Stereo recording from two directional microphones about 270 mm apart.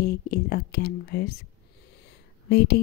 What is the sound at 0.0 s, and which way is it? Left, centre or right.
Speech, left.